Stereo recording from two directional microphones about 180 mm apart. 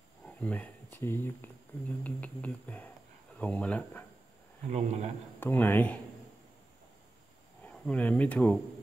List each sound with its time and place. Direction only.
0.2 s speech: 10° left (ahead or behind)
4.6 s a man's voice: 35° right (ahead or behind)
5.4 s speech: 10° left (ahead or behind)
7.6 s speech: 5° left (ahead or behind)